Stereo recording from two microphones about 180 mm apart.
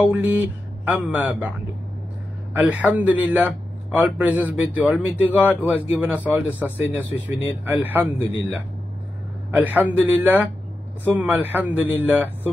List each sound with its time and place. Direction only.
0.0 s a man's voice: 10° right (ahead or behind)
2.6 s a man's voice: 10° right (ahead or behind)
9.6 s a man's voice: 10° right (ahead or behind)